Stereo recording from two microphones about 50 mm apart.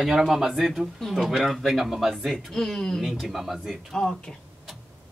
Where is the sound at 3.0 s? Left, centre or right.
Centre.